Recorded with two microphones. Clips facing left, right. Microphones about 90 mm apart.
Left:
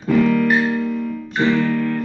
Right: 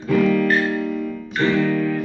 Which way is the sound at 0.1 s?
Centre (ahead or behind).